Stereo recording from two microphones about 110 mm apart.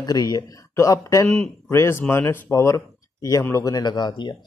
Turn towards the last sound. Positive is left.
turn(degrees=45)  # may be behind; listen again after turning